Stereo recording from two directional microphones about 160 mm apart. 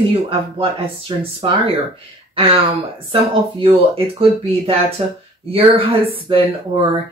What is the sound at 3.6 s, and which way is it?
Speech, 35° right (ahead or behind).